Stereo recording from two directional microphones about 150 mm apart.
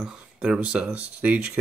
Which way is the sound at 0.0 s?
5° right (ahead or behind).